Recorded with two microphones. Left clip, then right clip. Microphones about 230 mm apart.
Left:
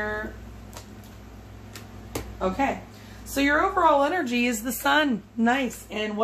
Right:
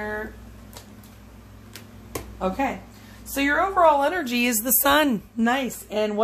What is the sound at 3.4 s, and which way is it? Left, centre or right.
A woman's voice, right.